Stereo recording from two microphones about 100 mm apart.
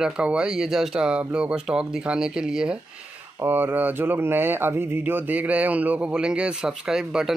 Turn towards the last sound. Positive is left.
turn(degrees=-5)  # may be behind; listen again after turning